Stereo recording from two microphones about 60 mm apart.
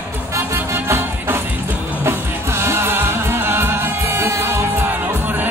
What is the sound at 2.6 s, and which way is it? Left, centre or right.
Music, right.